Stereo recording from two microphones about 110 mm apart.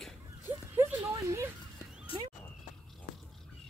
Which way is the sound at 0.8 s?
25° right (ahead or behind).